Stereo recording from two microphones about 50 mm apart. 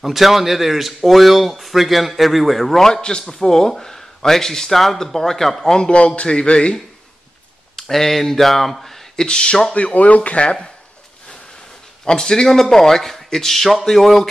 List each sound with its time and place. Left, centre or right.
0.0 s speech: centre
7.7 s speech: centre
9.8 s speech: left
12.0 s speech: centre